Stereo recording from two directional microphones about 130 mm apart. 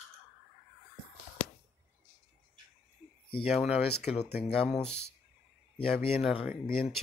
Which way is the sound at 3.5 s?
5° right (ahead or behind).